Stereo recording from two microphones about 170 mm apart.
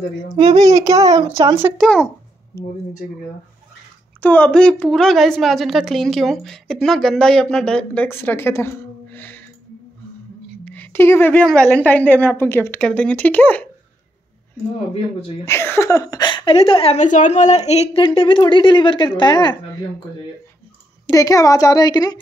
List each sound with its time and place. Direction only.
0.7 s a child's voice: 20° right (ahead or behind)
1.8 s a woman's voice: 5° left (ahead or behind)
2.5 s a woman's voice: 15° left (ahead or behind)
4.2 s a woman's voice: 10° left (ahead or behind)
10.6 s a woman's voice: 10° left (ahead or behind)
15.4 s a woman's voice: 15° left (ahead or behind)
21.1 s a woman's voice: 20° left (ahead or behind)